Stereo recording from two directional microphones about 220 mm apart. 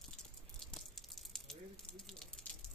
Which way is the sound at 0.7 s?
Centre (ahead or behind).